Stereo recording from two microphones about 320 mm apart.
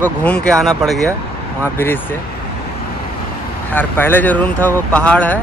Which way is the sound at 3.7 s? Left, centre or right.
Centre.